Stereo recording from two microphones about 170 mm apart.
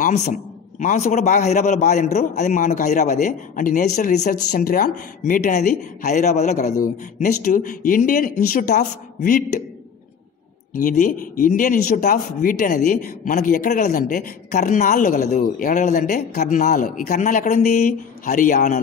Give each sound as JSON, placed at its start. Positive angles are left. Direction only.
{"t": 0.7, "sound": "speech", "side_deg": 40}
{"t": 5.2, "sound": "speech", "side_deg": 45}
{"t": 10.8, "sound": "speech", "side_deg": 50}